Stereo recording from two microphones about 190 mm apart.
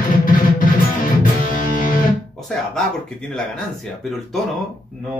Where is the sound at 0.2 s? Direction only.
45° left (ahead or behind).